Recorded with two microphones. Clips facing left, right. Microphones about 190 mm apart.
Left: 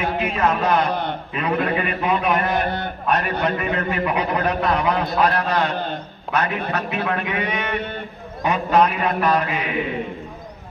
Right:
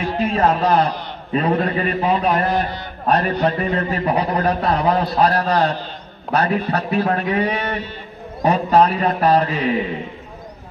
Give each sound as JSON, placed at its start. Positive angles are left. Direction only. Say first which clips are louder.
{"t": 0.3, "sound": "a man's voice", "louder": "right 4 dB", "side_deg": -35}
{"t": 2.6, "sound": "a sound", "louder": "left 2 dB", "side_deg": 55}
{"t": 3.1, "sound": "a man's voice", "louder": "right 4 dB", "side_deg": -35}